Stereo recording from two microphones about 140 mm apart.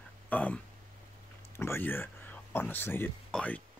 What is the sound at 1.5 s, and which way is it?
Speech, 15° left (ahead or behind).